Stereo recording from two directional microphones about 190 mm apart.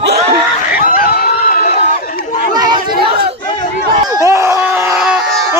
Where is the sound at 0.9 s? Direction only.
50° left (ahead or behind).